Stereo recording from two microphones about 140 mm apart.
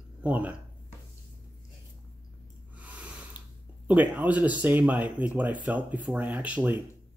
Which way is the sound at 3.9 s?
10° right (ahead or behind).